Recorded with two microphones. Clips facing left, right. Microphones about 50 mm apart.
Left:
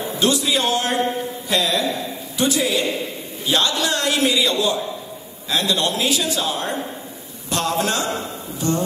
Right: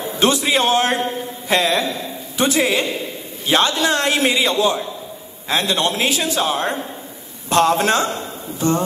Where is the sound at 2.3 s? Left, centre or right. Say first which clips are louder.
Right 3 dB; right.